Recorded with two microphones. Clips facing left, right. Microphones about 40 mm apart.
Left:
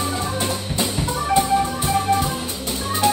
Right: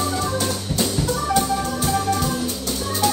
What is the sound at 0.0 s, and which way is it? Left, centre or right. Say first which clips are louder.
Music: right 1 dB; left.